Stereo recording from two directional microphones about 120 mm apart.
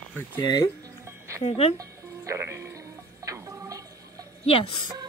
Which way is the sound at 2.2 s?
20° right (ahead or behind).